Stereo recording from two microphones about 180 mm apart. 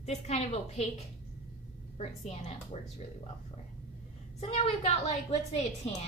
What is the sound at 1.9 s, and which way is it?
Speech, 40° left (ahead or behind).